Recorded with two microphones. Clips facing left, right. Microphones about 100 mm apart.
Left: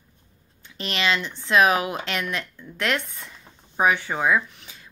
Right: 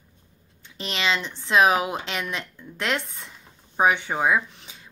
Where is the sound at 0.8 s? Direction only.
25° right (ahead or behind).